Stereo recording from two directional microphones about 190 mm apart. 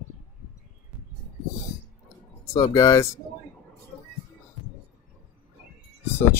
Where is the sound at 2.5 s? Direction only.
20° left (ahead or behind).